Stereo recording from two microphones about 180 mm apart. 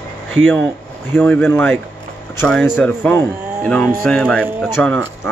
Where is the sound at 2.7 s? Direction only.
10° left (ahead or behind).